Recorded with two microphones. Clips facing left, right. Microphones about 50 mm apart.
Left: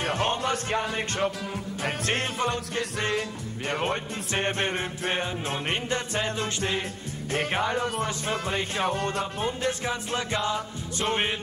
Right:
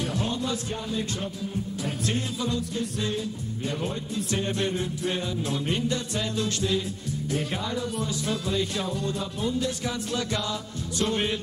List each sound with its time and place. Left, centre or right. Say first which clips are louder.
0.0 s music: left 3 dB; left
8.8 s music: left 3 dB; left